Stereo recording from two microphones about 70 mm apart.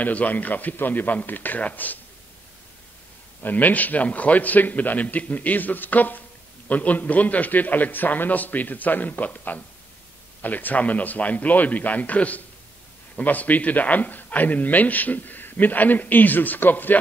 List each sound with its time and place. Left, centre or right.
0.0 s a man's voice: left
3.4 s a man's voice: left